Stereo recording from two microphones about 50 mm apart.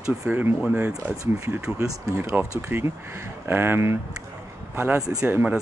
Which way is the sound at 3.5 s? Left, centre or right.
Right.